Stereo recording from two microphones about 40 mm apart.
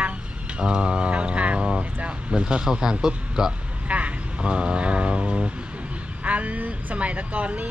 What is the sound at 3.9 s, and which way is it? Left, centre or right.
Speech, right.